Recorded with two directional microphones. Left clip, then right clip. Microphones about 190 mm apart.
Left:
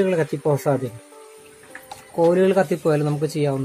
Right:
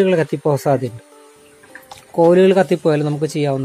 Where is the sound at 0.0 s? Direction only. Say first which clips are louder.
Right 5 dB; 45° right (ahead or behind).